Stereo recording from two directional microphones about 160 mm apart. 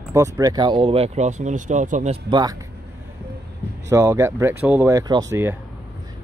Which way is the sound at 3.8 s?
20° right (ahead or behind).